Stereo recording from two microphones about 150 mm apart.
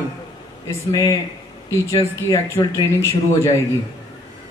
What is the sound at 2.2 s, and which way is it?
Speech, 20° left (ahead or behind).